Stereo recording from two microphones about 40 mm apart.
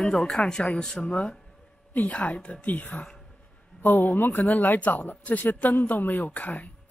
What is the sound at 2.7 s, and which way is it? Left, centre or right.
Speech, left.